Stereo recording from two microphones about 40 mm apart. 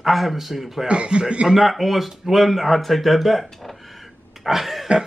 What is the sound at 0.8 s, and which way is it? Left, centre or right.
Speech, right.